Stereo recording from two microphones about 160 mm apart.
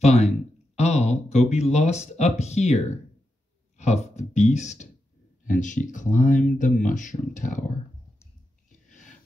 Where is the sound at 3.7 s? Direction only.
45° left (ahead or behind).